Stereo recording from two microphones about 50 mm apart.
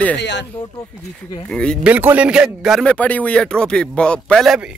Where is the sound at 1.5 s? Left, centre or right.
Centre.